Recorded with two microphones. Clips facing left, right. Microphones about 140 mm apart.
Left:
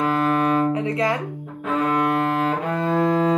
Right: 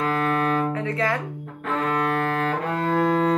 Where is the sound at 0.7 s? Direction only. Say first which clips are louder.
Left 3 dB; 15° left (ahead or behind).